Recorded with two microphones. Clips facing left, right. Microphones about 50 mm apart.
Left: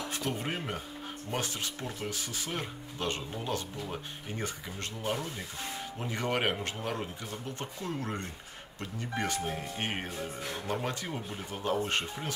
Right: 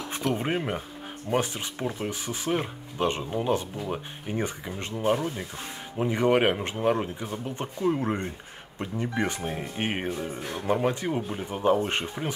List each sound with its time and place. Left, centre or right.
0.3 s speech: right